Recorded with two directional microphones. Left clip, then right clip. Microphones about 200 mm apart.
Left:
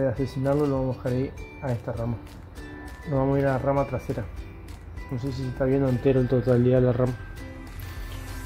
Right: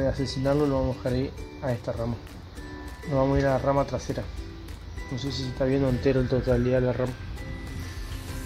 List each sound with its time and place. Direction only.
0.0 s speech: 25° left (ahead or behind)
3.2 s speech: 25° left (ahead or behind)
5.1 s speech: 30° left (ahead or behind)